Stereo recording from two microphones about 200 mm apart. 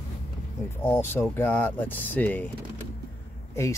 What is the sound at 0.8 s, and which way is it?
Speech, 10° left (ahead or behind).